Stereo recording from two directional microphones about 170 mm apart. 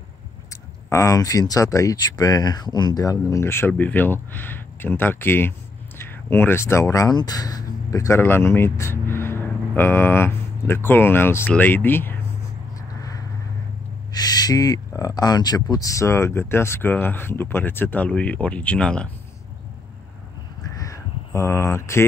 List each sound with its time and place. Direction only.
0.8 s speech: 20° left (ahead or behind)
14.1 s speech: 25° left (ahead or behind); by 19.0 s 5° left (ahead or behind)
20.7 s crow: 20° left (ahead or behind)